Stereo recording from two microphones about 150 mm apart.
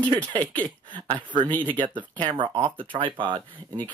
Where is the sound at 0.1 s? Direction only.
30° right (ahead or behind).